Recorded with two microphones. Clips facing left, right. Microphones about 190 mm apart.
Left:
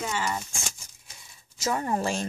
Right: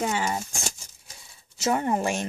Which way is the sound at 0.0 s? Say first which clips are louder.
Right 3 dB; 40° right (ahead or behind).